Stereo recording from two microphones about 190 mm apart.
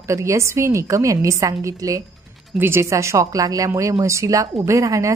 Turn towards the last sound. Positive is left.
turn(degrees=-15)  # may be behind; listen again after turning